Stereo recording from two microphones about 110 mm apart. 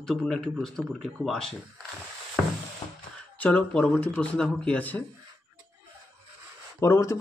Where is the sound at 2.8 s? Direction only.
35° left (ahead or behind).